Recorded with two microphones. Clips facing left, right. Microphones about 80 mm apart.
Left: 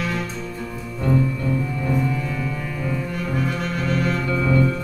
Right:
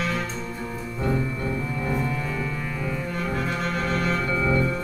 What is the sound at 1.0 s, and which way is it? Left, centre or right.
Music, centre.